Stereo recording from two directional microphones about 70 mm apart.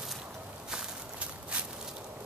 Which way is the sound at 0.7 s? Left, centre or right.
Centre.